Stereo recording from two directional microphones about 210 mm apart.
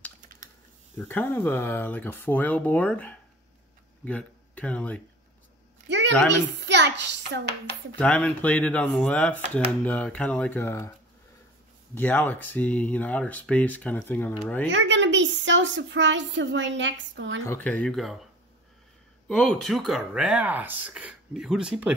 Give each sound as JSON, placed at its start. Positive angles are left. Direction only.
{"t": 0.9, "sound": "speech", "side_deg": 10}
{"t": 5.9, "sound": "a sound", "side_deg": -55}
{"t": 6.6, "sound": "a woman's voice", "side_deg": -55}
{"t": 8.0, "sound": "speech", "side_deg": 5}
{"t": 11.9, "sound": "speech", "side_deg": 10}
{"t": 14.7, "sound": "a woman's voice", "side_deg": -60}
{"t": 17.5, "sound": "speech", "side_deg": 10}
{"t": 19.2, "sound": "speech", "side_deg": 5}